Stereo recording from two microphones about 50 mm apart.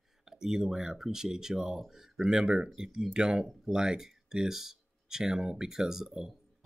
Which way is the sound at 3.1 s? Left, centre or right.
Centre.